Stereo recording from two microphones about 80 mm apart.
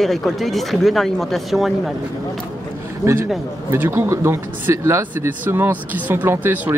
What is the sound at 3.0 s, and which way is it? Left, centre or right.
A man's voice, right.